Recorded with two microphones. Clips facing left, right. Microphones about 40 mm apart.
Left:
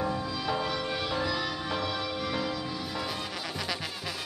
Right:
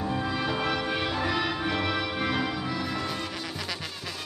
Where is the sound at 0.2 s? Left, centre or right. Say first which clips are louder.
Right 3 dB; right.